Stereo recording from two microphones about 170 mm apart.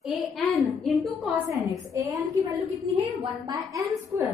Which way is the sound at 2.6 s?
35° right (ahead or behind).